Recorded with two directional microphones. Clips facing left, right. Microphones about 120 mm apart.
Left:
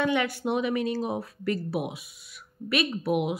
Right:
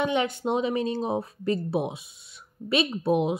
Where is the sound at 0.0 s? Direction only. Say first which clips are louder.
Right 1 dB; 20° right (ahead or behind).